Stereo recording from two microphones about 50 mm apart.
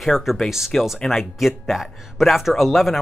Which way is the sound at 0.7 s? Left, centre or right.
Centre.